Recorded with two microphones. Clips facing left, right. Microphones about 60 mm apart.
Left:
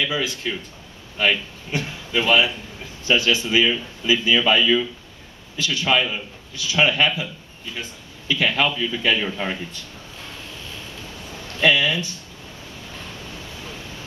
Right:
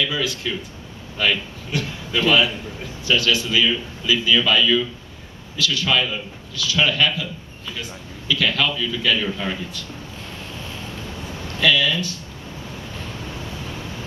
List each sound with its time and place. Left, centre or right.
0.0 s a man's voice: centre
8.3 s a man's voice: left
11.6 s a man's voice: left